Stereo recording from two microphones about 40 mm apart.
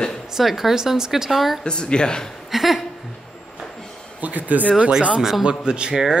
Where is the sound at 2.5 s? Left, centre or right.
Centre.